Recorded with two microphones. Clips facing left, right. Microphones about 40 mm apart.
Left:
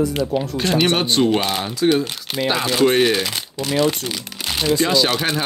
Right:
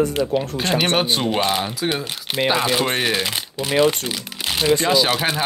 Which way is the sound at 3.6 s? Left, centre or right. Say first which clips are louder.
Right 2 dB; right.